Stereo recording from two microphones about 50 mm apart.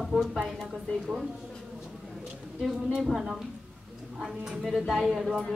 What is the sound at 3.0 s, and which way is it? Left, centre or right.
A woman's voice, centre.